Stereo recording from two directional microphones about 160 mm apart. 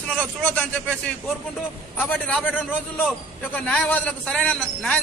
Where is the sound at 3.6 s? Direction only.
10° left (ahead or behind).